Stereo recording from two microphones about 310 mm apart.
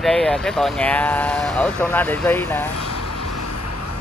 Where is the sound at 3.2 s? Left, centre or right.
Left.